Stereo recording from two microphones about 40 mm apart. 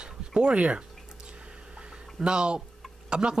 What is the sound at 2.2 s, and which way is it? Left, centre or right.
Speech, right.